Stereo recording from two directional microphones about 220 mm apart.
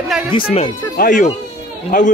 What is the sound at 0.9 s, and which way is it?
Speech, 40° left (ahead or behind).